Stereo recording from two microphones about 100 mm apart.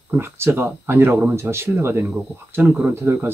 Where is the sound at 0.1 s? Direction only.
25° right (ahead or behind).